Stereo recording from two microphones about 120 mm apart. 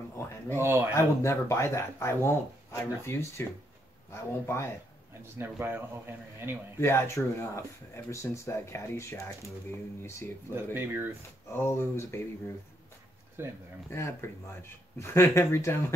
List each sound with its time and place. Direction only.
0.6 s speech: 20° right (ahead or behind)
0.9 s speech: 20° left (ahead or behind)
5.4 s speech: 20° right (ahead or behind)
6.8 s speech: 20° left (ahead or behind)
10.5 s speech: 20° right (ahead or behind)
11.5 s speech: 20° left (ahead or behind)
13.4 s speech: 20° right (ahead or behind)
13.8 s speech: 20° left (ahead or behind)